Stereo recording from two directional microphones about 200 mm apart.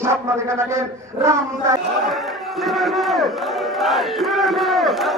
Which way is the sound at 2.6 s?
Centre (ahead or behind).